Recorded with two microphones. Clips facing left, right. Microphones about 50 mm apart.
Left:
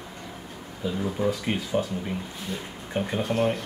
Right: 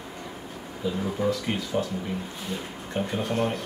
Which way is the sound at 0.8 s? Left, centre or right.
Centre.